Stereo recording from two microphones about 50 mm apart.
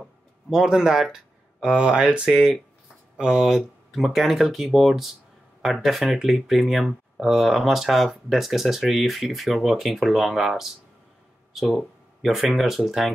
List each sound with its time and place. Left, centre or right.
0.0 s speech: centre